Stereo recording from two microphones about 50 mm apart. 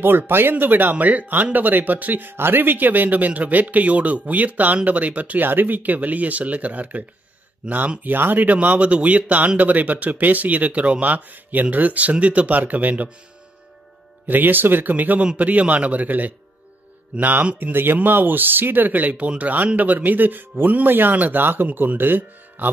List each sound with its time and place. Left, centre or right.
0.0 s speech: right
7.6 s speech: right
8.0 s speech: right
14.2 s speech: right